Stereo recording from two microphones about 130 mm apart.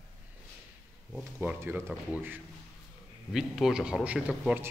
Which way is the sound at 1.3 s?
15° right (ahead or behind).